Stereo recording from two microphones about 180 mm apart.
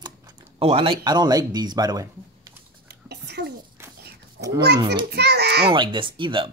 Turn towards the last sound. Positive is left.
turn(degrees=-25)  # may be behind; listen again after turning